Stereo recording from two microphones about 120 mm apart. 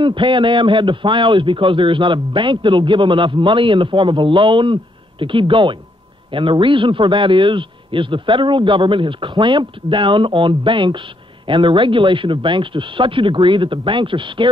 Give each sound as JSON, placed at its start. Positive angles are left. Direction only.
{"t": 0.0, "sound": "a man's voice", "side_deg": -45}